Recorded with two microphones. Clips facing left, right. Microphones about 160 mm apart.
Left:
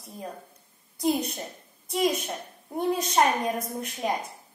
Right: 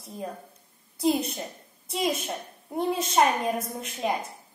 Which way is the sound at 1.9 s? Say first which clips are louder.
Left 2 dB; 5° right (ahead or behind).